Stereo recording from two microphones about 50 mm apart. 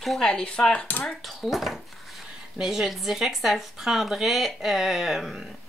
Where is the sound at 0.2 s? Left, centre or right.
Centre.